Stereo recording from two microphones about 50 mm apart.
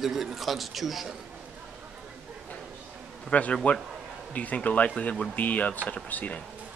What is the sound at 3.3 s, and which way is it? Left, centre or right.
Speech, left.